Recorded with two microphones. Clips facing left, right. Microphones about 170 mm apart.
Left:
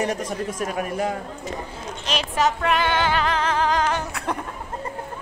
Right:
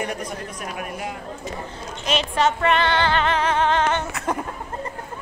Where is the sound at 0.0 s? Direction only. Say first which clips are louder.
Left 4 dB; 40° left (ahead or behind).